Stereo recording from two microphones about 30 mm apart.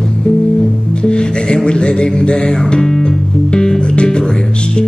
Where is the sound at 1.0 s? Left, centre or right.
Left.